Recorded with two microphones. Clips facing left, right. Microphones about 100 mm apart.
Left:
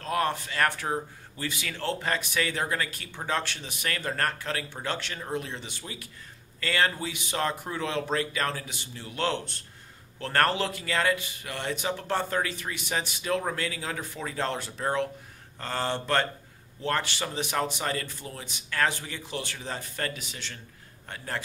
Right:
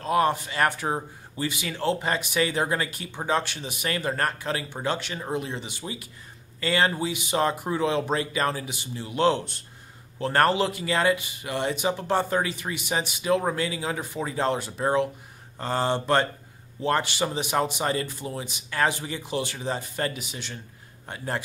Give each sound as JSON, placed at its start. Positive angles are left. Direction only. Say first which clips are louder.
{"t": 0.0, "sound": "speech", "louder": "right 5 dB", "side_deg": -15}